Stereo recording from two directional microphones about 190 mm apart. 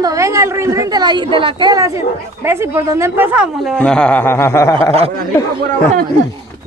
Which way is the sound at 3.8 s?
5° left (ahead or behind).